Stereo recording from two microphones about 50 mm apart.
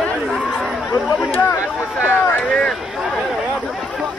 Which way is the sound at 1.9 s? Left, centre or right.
Left.